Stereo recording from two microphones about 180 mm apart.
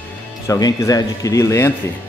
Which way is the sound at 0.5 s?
20° left (ahead or behind).